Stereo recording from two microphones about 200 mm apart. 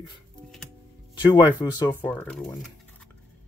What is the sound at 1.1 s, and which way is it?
Speech, 20° left (ahead or behind).